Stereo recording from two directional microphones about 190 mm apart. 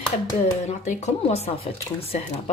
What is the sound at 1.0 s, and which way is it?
A woman's voice, 35° left (ahead or behind).